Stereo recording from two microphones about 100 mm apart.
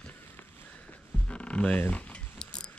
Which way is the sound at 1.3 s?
10° left (ahead or behind).